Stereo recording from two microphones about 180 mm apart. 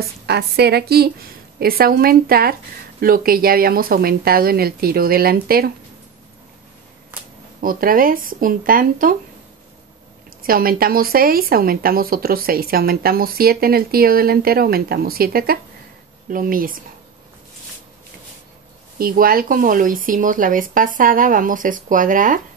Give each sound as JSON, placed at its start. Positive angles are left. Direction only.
{"t": 0.3, "sound": "speech", "side_deg": -65}
{"t": 7.6, "sound": "speech", "side_deg": -50}
{"t": 10.4, "sound": "speech", "side_deg": -55}
{"t": 18.9, "sound": "speech", "side_deg": -55}